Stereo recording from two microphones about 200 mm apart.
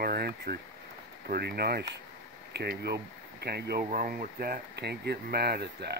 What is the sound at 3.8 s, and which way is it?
Speech, 40° right (ahead or behind).